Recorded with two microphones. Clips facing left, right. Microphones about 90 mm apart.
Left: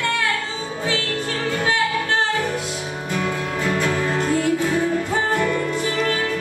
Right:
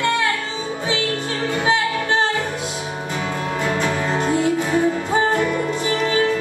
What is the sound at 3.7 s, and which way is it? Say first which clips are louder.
Music: even; 20° right (ahead or behind).